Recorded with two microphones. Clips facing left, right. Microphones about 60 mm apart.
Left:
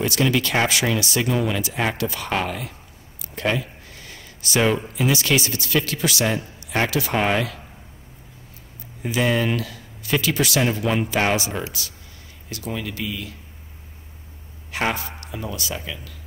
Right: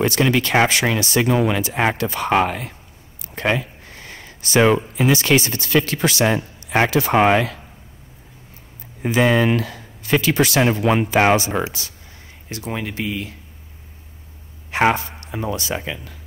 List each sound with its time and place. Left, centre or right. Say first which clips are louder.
0.0 s speech: right 3 dB; right
3.3 s a sound: right 3 dB; right
4.9 s speech: right 4 dB; right
9.0 s speech: right 5 dB; right
11.6 s speech: right 6 dB; centre
12.4 s speech: right 2 dB; right
14.7 s speech: right 7 dB; right